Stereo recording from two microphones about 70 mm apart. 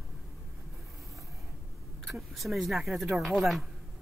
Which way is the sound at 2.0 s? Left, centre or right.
Centre.